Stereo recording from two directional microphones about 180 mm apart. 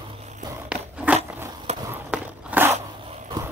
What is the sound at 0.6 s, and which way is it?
Biting, 10° right (ahead or behind).